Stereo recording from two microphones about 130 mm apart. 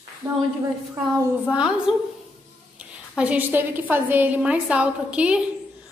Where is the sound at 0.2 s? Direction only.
30° right (ahead or behind).